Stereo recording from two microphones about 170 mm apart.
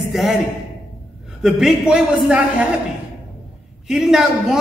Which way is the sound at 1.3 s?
5° right (ahead or behind).